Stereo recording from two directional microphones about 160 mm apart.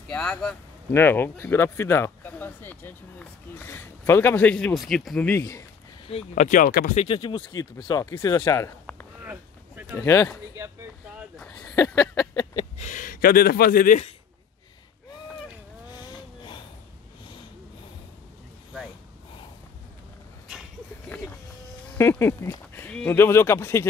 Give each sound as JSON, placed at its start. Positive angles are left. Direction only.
{"t": 0.1, "sound": "speech", "side_deg": 5}
{"t": 6.0, "sound": "speech", "side_deg": 45}
{"t": 7.0, "sound": "speech", "side_deg": 35}
{"t": 9.2, "sound": "boat", "side_deg": -15}
{"t": 9.9, "sound": "speech", "side_deg": 15}
{"t": 11.3, "sound": "a sound", "side_deg": 10}
{"t": 11.7, "sound": "a sound", "side_deg": 20}
{"t": 12.7, "sound": "speech", "side_deg": 50}
{"t": 15.9, "sound": "vehicle", "side_deg": 25}
{"t": 21.1, "sound": "vehicle", "side_deg": 10}
{"t": 21.9, "sound": "speech", "side_deg": 15}